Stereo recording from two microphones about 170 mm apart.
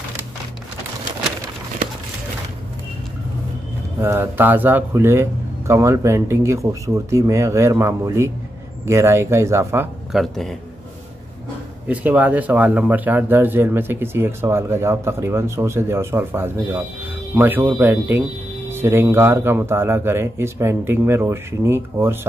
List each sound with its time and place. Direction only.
4.0 s speech: 15° right (ahead or behind)
10.1 s a man's voice: centre (ahead or behind)
11.9 s speech: 10° right (ahead or behind)